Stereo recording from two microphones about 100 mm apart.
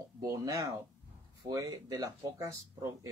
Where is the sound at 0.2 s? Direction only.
35° right (ahead or behind).